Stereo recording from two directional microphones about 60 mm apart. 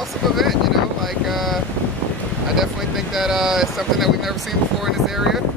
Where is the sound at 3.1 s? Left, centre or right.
Centre.